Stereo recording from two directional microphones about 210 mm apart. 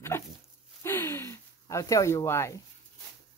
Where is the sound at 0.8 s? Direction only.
10° left (ahead or behind).